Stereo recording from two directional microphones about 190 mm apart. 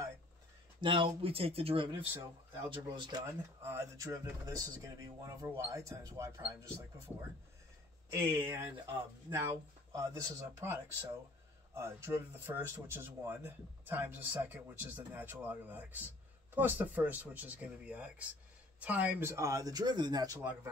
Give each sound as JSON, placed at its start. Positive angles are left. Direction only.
{"t": 0.7, "sound": "speech", "side_deg": -25}
{"t": 8.1, "sound": "speech", "side_deg": -15}